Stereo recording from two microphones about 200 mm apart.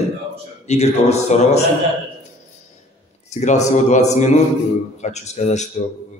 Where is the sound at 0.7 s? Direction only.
35° left (ahead or behind).